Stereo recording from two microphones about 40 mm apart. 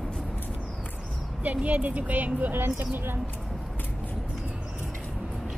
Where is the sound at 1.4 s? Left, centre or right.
Right.